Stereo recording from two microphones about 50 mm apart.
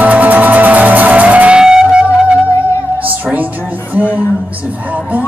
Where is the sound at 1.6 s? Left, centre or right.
Centre.